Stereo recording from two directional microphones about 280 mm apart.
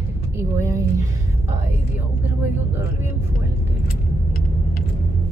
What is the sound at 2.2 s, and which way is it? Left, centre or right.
Speech, centre.